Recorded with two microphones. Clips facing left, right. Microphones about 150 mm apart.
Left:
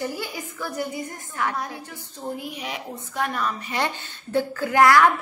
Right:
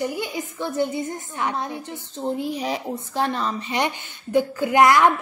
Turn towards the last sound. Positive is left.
turn(degrees=-20)  # may be behind; listen again after turning